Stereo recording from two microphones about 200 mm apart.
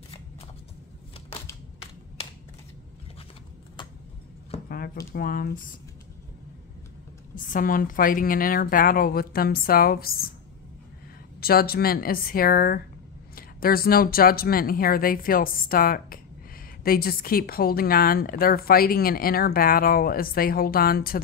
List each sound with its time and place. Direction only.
4.6 s a sound: 50° left (ahead or behind)
5.1 s a woman's voice: 45° left (ahead or behind)
7.3 s a woman's voice: 40° left (ahead or behind)
11.4 s a woman's voice: 50° left (ahead or behind)